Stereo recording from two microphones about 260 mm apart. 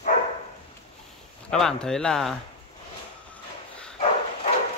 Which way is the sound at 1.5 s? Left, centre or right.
Centre.